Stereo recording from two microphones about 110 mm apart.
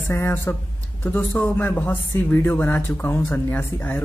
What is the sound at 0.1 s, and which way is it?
Speech, 20° left (ahead or behind).